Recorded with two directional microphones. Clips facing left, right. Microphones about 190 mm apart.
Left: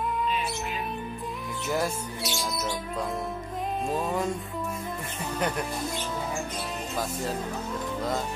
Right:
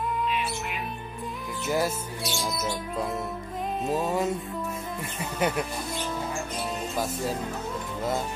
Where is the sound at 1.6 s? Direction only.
Centre (ahead or behind).